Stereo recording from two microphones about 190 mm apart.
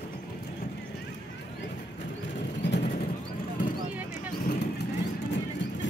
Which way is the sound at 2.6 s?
65° left (ahead or behind).